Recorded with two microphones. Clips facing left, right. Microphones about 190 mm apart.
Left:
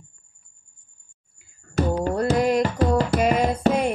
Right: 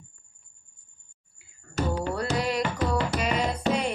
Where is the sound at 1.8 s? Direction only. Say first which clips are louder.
Left 6 dB; 45° left (ahead or behind).